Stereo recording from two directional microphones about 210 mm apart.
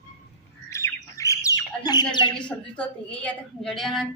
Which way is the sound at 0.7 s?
15° left (ahead or behind).